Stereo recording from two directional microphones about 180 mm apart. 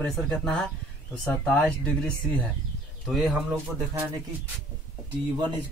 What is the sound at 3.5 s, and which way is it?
Speech, 15° right (ahead or behind).